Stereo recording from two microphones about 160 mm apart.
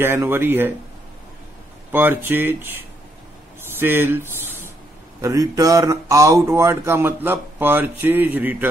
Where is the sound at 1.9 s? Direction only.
10° right (ahead or behind).